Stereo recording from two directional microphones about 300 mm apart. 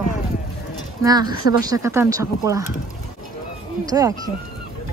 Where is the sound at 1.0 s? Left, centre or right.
Centre.